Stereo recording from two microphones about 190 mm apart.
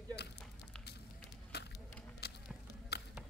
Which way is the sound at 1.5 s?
60° left (ahead or behind).